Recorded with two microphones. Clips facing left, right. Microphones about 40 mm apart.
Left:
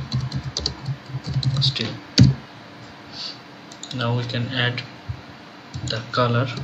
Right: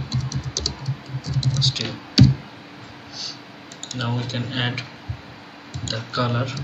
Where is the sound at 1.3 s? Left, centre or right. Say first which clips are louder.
Right 1 dB; centre.